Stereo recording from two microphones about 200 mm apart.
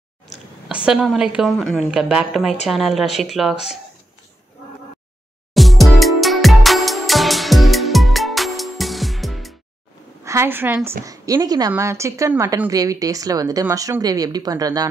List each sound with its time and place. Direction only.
0.7 s a woman's voice: 5° right (ahead or behind)
5.5 s music: centre (ahead or behind)
10.2 s a woman's voice: 15° right (ahead or behind)